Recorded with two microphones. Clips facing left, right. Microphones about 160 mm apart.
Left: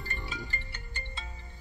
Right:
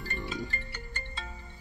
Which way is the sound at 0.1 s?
40° right (ahead or behind).